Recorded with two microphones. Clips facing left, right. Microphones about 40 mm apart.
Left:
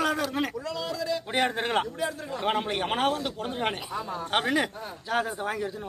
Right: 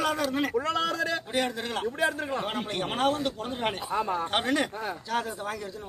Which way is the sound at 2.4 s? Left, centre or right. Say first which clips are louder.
Left 4 dB; centre.